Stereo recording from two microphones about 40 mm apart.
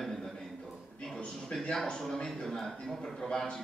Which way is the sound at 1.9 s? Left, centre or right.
Centre.